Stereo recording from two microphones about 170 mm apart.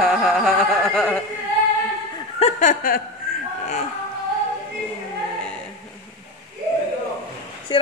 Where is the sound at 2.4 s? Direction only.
45° left (ahead or behind).